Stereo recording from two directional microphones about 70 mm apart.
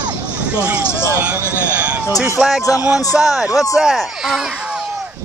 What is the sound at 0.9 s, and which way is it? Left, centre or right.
Speech, left.